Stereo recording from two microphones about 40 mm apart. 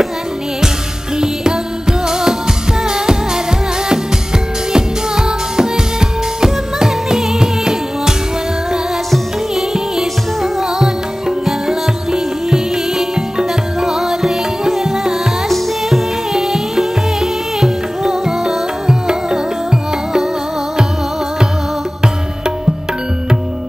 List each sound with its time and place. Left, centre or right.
1.1 s music: centre
4.7 s music: centre
9.6 s music: centre